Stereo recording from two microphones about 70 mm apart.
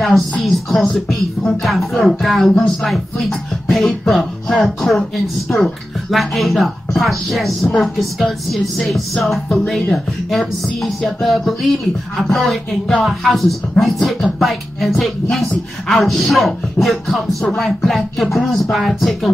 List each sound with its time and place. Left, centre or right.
0.5 s speech: centre
7.6 s speech: centre
8.7 s speech: centre